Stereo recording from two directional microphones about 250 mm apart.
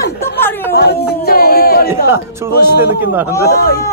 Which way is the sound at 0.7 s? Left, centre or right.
Left.